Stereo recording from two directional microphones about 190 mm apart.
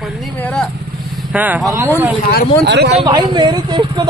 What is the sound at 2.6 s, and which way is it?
Speech, 65° right (ahead or behind).